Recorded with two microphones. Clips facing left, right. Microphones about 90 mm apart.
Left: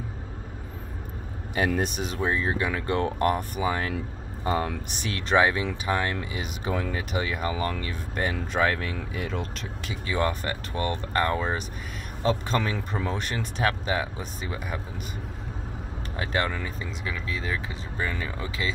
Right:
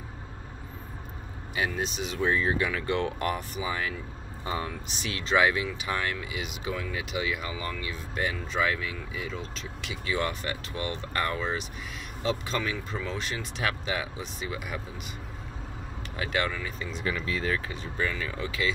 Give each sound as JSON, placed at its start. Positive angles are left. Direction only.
{"t": 1.7, "sound": "speech", "side_deg": 50}
{"t": 2.1, "sound": "speech", "side_deg": 30}
{"t": 9.8, "sound": "speech", "side_deg": 35}
{"t": 16.2, "sound": "speech", "side_deg": 35}
{"t": 17.3, "sound": "speech", "side_deg": 20}